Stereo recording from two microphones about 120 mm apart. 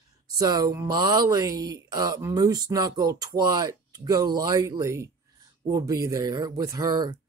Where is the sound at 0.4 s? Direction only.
30° right (ahead or behind).